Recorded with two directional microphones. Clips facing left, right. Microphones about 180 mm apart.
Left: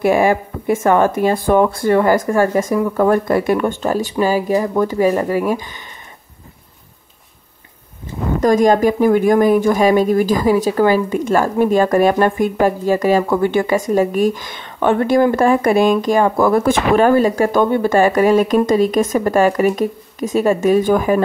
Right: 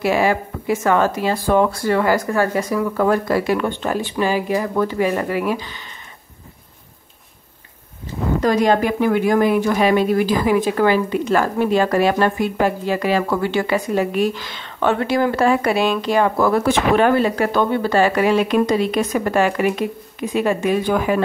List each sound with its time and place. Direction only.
0.0 s speech: 50° left (ahead or behind)
3.3 s speech: 50° left (ahead or behind)
8.4 s speech: 45° left (ahead or behind)